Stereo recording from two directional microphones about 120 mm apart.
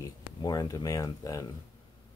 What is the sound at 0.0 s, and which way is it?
Speech, 35° left (ahead or behind).